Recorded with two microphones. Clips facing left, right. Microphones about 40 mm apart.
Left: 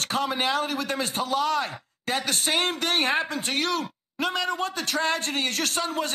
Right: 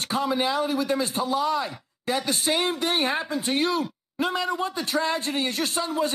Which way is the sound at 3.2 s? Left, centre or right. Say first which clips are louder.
Right 2 dB; left.